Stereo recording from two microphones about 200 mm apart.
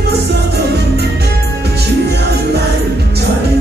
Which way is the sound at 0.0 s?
55° right (ahead or behind).